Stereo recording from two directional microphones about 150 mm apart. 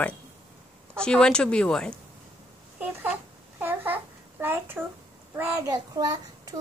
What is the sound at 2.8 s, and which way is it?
Babbling, 10° right (ahead or behind).